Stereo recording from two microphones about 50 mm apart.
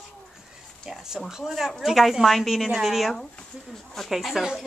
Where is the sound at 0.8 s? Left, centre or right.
Centre.